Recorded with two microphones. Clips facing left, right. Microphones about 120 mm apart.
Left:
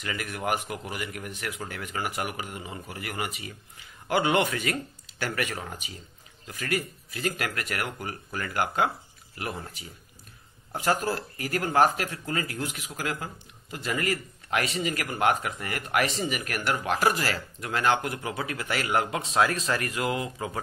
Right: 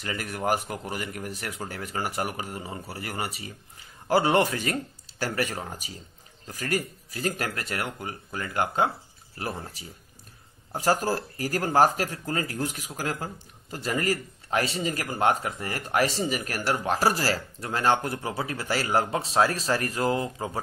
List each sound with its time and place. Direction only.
0.0 s speech: 35° right (ahead or behind)